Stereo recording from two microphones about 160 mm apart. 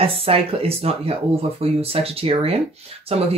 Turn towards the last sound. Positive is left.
turn(degrees=-35)  # may be behind; listen again after turning